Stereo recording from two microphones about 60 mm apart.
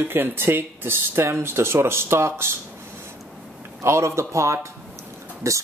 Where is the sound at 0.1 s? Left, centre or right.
Right.